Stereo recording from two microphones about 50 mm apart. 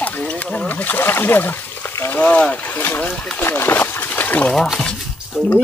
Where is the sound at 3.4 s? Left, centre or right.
Left.